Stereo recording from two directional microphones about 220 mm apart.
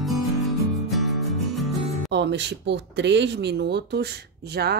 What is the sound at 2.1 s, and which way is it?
Speech, 50° right (ahead or behind).